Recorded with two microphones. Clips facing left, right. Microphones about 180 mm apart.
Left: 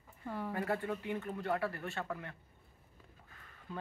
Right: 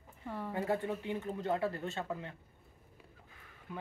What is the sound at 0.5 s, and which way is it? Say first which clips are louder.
Speech: right 2 dB; 20° right (ahead or behind).